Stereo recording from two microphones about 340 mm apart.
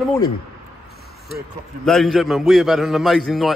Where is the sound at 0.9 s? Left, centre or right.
Left.